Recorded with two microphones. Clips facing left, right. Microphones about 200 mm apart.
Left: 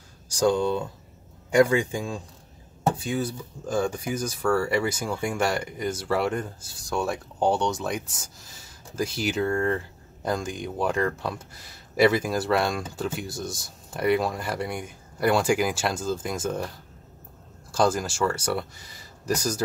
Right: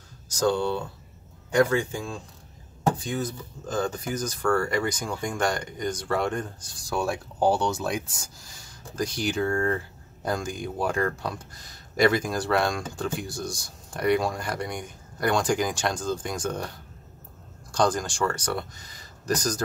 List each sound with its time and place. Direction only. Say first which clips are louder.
0.4 s a man's voice: left 2 dB; 15° left (ahead or behind)